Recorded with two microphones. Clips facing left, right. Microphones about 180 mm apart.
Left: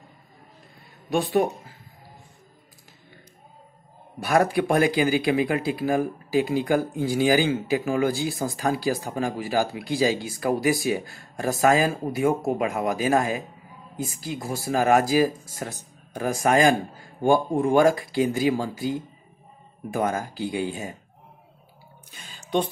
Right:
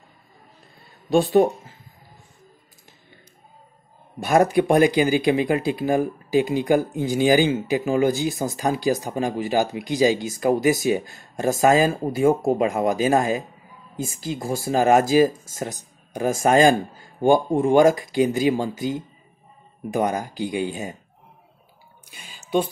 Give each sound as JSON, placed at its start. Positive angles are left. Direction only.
{"t": 1.1, "sound": "speech", "side_deg": -25}
{"t": 4.2, "sound": "speech", "side_deg": -20}
{"t": 22.1, "sound": "a sound", "side_deg": -10}